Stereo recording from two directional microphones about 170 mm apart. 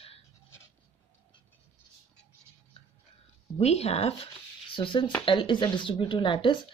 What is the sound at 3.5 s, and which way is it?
A woman's voice, 40° left (ahead or behind).